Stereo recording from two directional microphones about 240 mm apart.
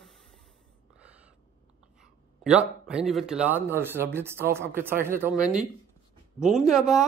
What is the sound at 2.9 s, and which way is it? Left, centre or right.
Speech, centre.